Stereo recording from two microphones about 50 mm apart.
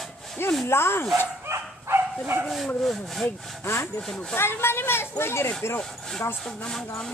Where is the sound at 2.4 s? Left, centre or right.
Centre.